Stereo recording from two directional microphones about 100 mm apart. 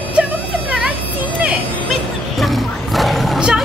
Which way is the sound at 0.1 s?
10° right (ahead or behind).